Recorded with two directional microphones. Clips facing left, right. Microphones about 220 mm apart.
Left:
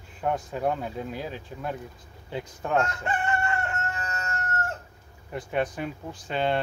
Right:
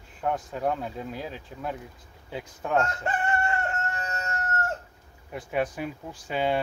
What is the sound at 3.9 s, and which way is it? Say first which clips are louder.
Fowl: right 1 dB; 40° right (ahead or behind).